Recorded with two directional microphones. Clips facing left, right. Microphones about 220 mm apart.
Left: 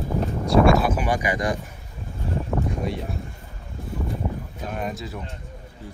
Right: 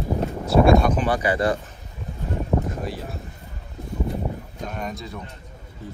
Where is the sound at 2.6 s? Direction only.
Centre (ahead or behind).